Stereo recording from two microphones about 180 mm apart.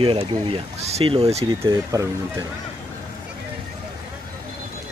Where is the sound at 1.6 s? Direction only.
20° right (ahead or behind).